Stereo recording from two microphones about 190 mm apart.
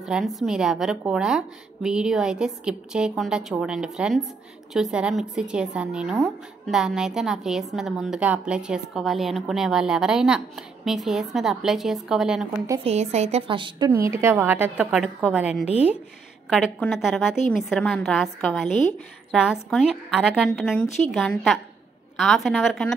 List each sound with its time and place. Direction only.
0.0 s a woman's voice: centre (ahead or behind)
12.8 s a woman's voice: 35° right (ahead or behind)
13.8 s a woman's voice: 15° right (ahead or behind); by 22.9 s centre (ahead or behind)